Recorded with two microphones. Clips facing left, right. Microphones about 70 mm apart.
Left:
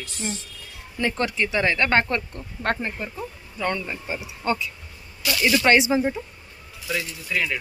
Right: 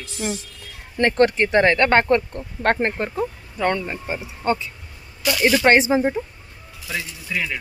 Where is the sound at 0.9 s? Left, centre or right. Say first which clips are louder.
Right 8 dB; right.